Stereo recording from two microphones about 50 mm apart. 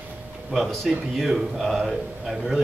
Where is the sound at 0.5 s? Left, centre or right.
Centre.